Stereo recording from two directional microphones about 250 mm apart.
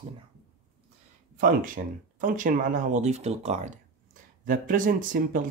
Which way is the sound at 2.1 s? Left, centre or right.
Right.